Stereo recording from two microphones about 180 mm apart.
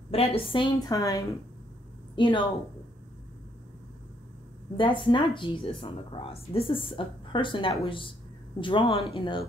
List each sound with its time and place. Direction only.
0.1 s a woman's voice: 30° left (ahead or behind)
4.7 s speech: 25° left (ahead or behind)